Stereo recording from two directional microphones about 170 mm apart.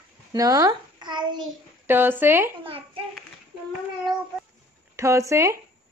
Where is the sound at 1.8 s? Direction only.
10° right (ahead or behind).